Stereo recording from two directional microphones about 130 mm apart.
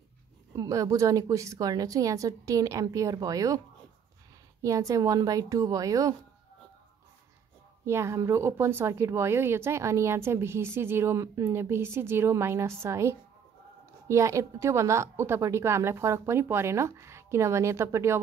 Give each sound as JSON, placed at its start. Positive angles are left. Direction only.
{"t": 0.6, "sound": "speech", "side_deg": -25}
{"t": 7.8, "sound": "speech", "side_deg": -20}